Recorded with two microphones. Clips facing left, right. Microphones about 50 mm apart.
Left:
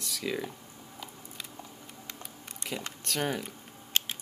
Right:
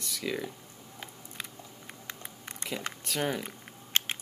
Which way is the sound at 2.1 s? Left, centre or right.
Right.